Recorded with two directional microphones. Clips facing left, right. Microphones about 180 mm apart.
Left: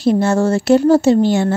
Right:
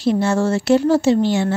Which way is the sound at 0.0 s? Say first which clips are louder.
Left 3 dB; 45° left (ahead or behind).